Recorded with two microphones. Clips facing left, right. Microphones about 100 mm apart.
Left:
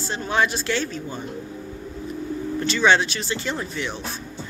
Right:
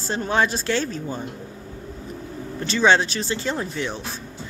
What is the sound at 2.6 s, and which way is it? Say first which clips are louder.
Speech: right 1 dB; 35° right (ahead or behind).